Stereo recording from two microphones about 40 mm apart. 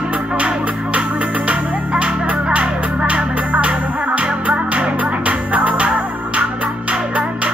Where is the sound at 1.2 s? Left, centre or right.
Right.